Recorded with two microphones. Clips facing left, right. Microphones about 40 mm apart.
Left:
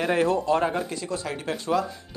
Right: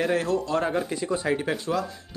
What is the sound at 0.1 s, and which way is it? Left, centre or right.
Speech, left.